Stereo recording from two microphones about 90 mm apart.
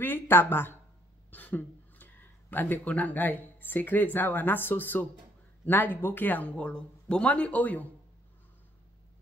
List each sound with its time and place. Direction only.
0.0 s speech: 25° left (ahead or behind)